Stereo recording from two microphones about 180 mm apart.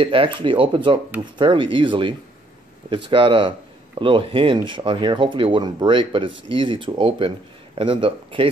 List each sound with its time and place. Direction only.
0.0 s speech: 30° right (ahead or behind)